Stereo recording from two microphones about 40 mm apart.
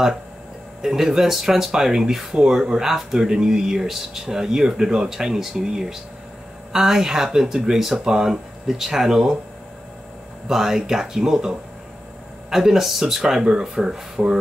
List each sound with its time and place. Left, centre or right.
0.8 s speech: centre
5.4 s speech: centre
10.5 s speech: centre